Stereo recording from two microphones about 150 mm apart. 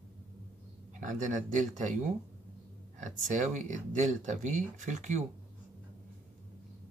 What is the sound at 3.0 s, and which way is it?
Speech, 55° right (ahead or behind).